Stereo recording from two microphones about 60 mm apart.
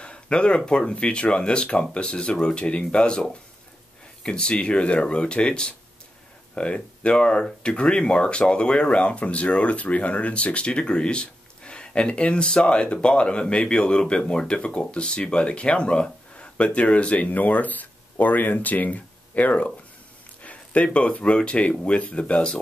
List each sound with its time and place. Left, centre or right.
0.0 s speech: centre